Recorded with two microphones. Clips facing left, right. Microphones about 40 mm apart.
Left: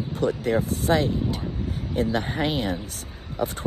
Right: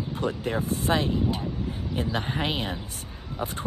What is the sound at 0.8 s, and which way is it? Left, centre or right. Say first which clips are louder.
Speech: left 1 dB; right.